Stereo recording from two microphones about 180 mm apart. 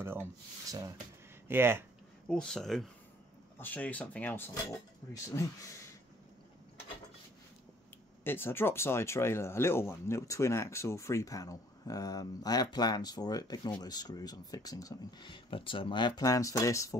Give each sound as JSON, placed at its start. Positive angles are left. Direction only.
{"t": 0.0, "sound": "speech", "side_deg": -15}
{"t": 2.2, "sound": "speech", "side_deg": 5}
{"t": 8.2, "sound": "speech", "side_deg": 10}